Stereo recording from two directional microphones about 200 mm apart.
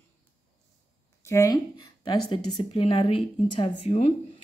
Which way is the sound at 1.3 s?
15° left (ahead or behind).